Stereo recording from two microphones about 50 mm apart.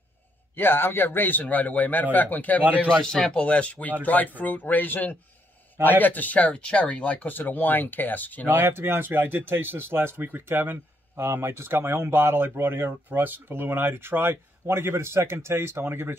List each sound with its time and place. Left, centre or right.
0.6 s speech: left
1.4 s speech: left
2.6 s a man's voice: right
3.1 s speech: centre; by 8.5 s left
8.5 s speech: right